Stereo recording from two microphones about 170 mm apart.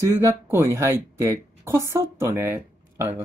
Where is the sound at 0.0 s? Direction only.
15° right (ahead or behind).